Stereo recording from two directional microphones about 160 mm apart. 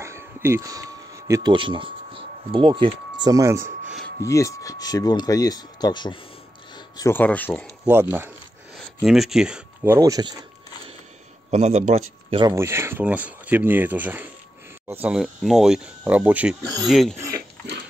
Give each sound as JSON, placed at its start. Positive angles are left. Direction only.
{"t": 0.0, "sound": "speech", "side_deg": -15}
{"t": 4.2, "sound": "speech", "side_deg": 20}
{"t": 7.1, "sound": "speech", "side_deg": 10}
{"t": 7.8, "sound": "speech", "side_deg": -15}
{"t": 8.7, "sound": "speech", "side_deg": 0}
{"t": 9.9, "sound": "speech", "side_deg": -20}
{"t": 11.5, "sound": "a man's voice", "side_deg": -45}
{"t": 12.4, "sound": "speech", "side_deg": -20}
{"t": 16.8, "sound": "speech", "side_deg": 0}